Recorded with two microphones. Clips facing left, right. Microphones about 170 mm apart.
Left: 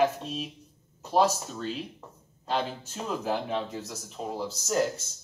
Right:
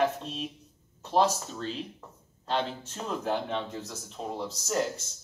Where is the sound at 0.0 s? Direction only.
5° left (ahead or behind).